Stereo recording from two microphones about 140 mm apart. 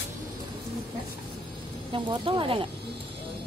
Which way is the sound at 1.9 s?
35° right (ahead or behind).